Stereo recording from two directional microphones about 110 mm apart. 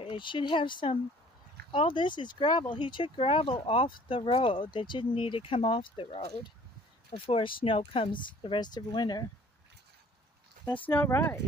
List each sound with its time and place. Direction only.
0.0 s speech: 50° left (ahead or behind)
7.2 s speech: 55° left (ahead or behind); by 9.2 s 40° left (ahead or behind)
10.9 s speech: 20° left (ahead or behind)